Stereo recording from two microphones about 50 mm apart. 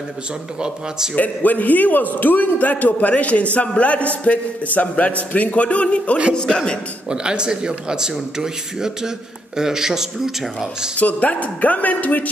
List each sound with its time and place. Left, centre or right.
0.6 s speech: centre
1.1 s a man's voice: left; by 6.8 s centre
7.1 s speech: centre
11.0 s speech: left